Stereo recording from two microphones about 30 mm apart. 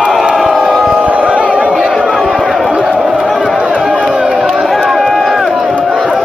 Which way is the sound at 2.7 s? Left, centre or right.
Right.